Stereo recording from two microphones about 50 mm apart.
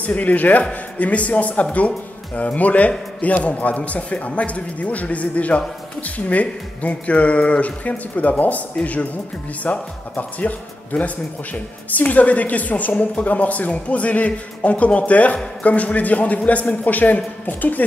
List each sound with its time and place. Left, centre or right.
0.0 s a man's voice: left